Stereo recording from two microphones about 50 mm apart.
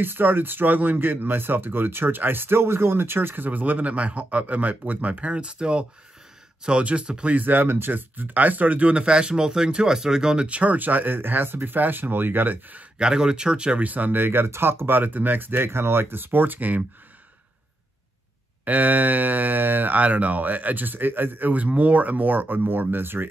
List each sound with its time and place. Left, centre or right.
0.0 s speech: right; by 7.3 s centre
7.3 s speech: right
13.0 s speech: centre; by 16.8 s right
18.6 s speech: right